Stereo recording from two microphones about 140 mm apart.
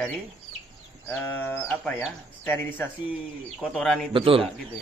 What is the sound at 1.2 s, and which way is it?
Speech, 10° left (ahead or behind).